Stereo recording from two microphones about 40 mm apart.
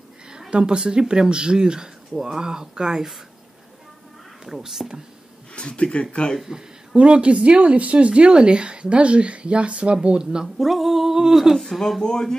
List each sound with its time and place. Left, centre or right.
0.5 s speech: right
4.5 s speech: centre
5.5 s speech: left
6.4 s a sound: centre
7.0 s speech: right
10.6 s female singing: centre
12.0 s speech: centre